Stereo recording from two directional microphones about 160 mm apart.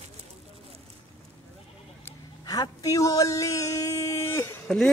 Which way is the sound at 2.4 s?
25° left (ahead or behind).